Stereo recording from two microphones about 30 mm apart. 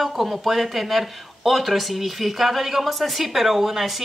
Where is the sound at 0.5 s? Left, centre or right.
Centre.